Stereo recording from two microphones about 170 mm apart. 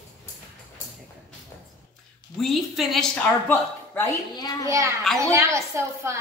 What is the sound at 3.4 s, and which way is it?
Speech, 10° left (ahead or behind).